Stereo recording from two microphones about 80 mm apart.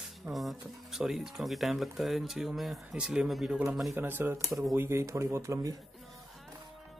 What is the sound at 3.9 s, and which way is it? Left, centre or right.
Speech, right.